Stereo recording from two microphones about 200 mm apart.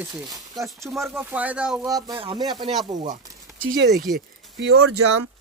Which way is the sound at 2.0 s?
25° right (ahead or behind).